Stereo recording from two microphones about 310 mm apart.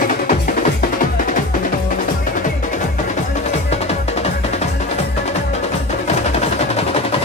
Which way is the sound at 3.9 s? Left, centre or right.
Left.